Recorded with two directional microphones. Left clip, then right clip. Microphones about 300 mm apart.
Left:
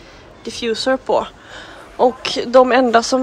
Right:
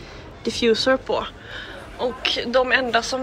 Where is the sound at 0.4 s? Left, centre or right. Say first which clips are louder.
Right 2 dB; centre.